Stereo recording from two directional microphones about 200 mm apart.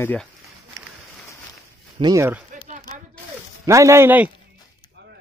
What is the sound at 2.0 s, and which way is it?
Speech, 15° right (ahead or behind).